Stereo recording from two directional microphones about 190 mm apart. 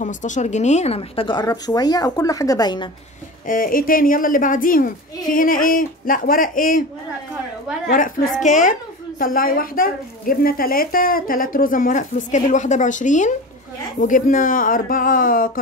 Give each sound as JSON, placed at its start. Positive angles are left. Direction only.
{"t": 0.0, "sound": "speech", "side_deg": 40}
{"t": 3.4, "sound": "a woman's voice", "side_deg": 45}
{"t": 8.4, "sound": "a woman's voice", "side_deg": 40}